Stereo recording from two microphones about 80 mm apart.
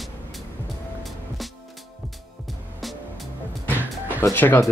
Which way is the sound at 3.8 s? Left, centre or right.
Right.